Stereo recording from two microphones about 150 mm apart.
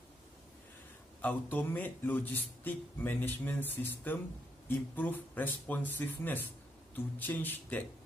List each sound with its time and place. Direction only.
1.2 s speech: 15° left (ahead or behind)